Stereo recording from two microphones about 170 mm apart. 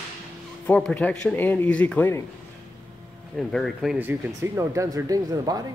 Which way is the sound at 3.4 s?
Centre (ahead or behind).